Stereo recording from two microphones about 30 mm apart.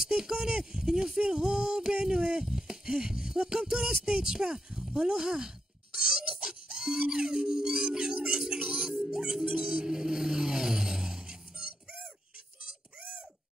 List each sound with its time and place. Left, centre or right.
0.2 s music: right
2.4 s a sound: centre
2.9 s music: right
9.5 s music: right
9.8 s vehicle: right